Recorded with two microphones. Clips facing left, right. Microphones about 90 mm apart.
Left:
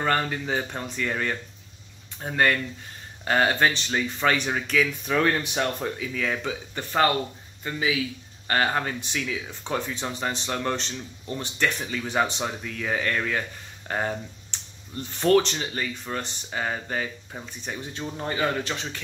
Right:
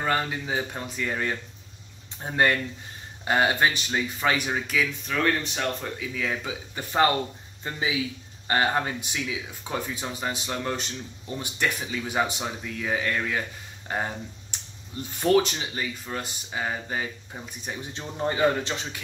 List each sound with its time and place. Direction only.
0.0 s speech: 5° right (ahead or behind)
5.0 s speech: 10° left (ahead or behind)
5.9 s speech: centre (ahead or behind)
7.6 s a man's voice: 25° right (ahead or behind)
8.5 s speech: 15° right (ahead or behind)
17.9 s a man's voice: 20° right (ahead or behind)